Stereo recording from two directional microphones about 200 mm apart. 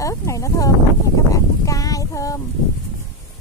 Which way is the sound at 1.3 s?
15° left (ahead or behind).